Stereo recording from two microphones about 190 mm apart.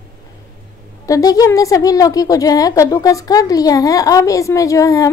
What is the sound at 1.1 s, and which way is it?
A woman's voice, 20° left (ahead or behind).